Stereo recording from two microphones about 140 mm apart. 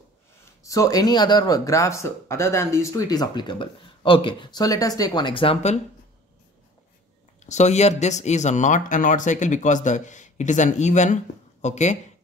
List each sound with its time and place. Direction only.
0.7 s speech: 25° left (ahead or behind); by 5.8 s 45° left (ahead or behind)
7.4 s speech: 55° left (ahead or behind)